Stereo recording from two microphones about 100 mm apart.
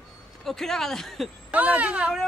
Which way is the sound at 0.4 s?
5° left (ahead or behind).